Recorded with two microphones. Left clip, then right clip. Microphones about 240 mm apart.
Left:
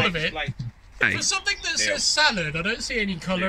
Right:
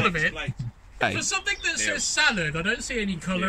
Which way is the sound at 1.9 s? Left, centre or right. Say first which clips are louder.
Left 3 dB; centre.